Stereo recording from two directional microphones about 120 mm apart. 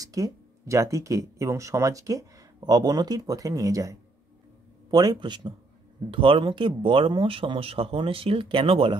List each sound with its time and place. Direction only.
0.0 s speech: 30° right (ahead or behind); by 8.9 s 50° right (ahead or behind)